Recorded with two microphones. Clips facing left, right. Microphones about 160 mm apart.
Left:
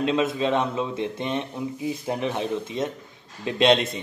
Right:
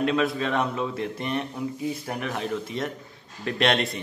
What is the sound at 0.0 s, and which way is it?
A man's voice, 20° left (ahead or behind).